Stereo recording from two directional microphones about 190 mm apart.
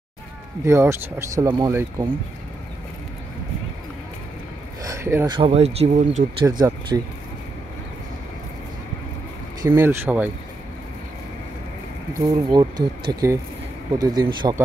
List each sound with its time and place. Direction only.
0.7 s speech: 15° right (ahead or behind)
4.8 s speech: 15° right (ahead or behind); by 6.2 s 35° right (ahead or behind)
6.4 s speech: 20° right (ahead or behind)
9.6 s speech: 10° right (ahead or behind)
12.4 s speech: 20° right (ahead or behind)